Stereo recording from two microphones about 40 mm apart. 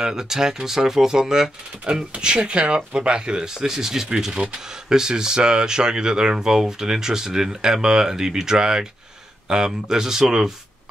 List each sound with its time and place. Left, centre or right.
0.0 s speech: centre
4.2 s speech: right